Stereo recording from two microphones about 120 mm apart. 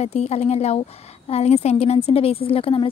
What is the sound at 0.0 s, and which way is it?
Speech, 65° left (ahead or behind).